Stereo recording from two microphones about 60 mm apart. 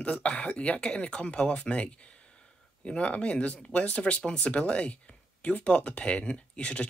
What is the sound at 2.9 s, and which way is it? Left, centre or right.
Speech, centre.